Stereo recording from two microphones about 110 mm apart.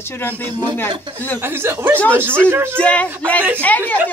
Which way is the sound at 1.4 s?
20° right (ahead or behind).